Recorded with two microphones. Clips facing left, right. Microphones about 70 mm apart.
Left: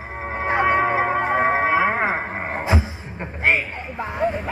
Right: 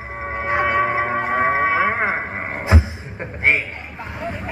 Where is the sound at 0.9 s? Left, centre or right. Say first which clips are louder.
Left 1 dB; right.